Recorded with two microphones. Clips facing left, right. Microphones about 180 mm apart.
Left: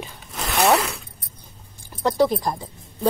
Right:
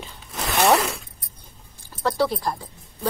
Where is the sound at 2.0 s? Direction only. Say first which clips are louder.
Left 3 dB; 15° left (ahead or behind).